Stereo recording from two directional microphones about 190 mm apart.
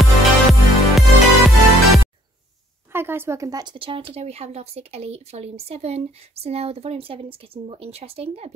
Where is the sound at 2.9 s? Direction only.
10° right (ahead or behind).